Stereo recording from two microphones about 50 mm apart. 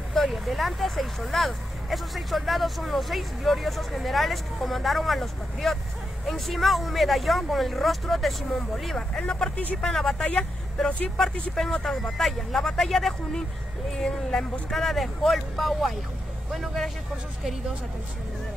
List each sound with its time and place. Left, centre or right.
0.1 s speech: centre